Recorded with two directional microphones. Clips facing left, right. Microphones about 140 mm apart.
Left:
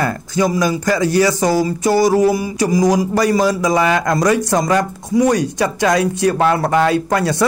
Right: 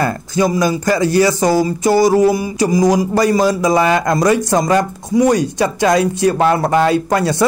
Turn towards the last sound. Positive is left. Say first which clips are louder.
# right 1 dB
turn(degrees=-25)  # may be behind; listen again after turning